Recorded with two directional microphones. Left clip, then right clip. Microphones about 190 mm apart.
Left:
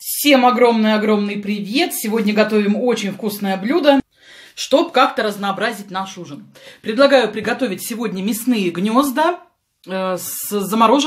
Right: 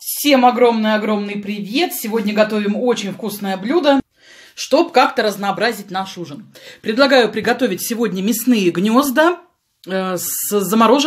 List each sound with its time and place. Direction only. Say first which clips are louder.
0.2 s speech: even; 5° right (ahead or behind)
4.6 s speech: even; 15° right (ahead or behind)
4.9 s speech: right 1 dB; 30° right (ahead or behind)